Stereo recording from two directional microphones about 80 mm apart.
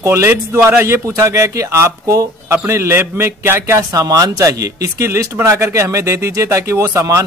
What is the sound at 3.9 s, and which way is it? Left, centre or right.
Speech, right.